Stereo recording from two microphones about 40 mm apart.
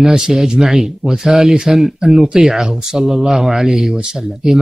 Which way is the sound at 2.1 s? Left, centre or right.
Right.